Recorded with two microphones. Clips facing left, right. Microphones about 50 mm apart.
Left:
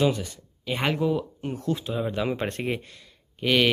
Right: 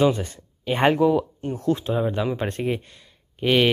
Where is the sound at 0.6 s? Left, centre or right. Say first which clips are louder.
Right 7 dB; right.